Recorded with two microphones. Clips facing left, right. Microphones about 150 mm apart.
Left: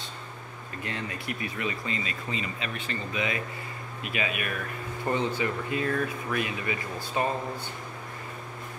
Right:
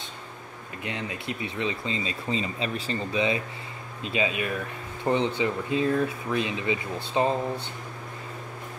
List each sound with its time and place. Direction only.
0.8 s speech: 15° right (ahead or behind)